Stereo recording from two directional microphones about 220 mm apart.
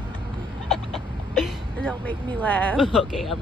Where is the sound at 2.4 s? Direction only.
5° left (ahead or behind).